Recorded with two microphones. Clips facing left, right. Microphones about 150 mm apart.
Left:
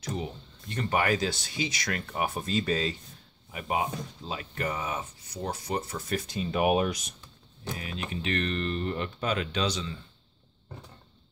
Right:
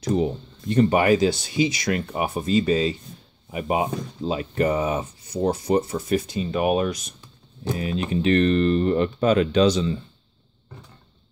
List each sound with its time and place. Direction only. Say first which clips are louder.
0.0 s speech: right 12 dB; 30° right (ahead or behind); by 3.0 s 5° right (ahead or behind)
3.5 s speech: right 7 dB; 20° right (ahead or behind); by 7.2 s 15° left (ahead or behind)
7.7 s speech: right 11 dB; 30° right (ahead or behind)